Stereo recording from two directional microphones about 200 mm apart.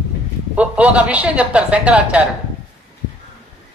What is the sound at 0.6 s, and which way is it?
A man's voice, 5° right (ahead or behind).